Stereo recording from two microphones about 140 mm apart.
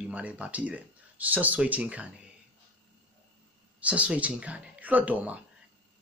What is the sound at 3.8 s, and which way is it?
Speech, 10° right (ahead or behind).